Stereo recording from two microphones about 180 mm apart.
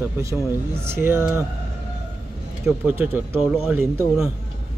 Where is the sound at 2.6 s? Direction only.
10° right (ahead or behind).